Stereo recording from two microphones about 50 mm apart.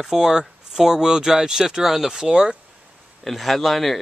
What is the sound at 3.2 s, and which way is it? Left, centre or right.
Speech, centre.